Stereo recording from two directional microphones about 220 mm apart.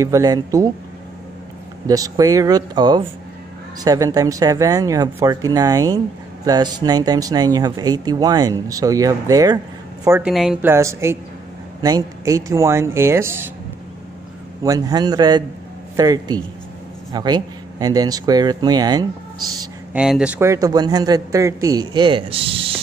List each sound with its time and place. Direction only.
0.0 s speech: 15° right (ahead or behind)
1.9 s speech: 15° right (ahead or behind)
14.6 s speech: 15° right (ahead or behind)
19.6 s speech: 5° right (ahead or behind); by 22.8 s 25° right (ahead or behind)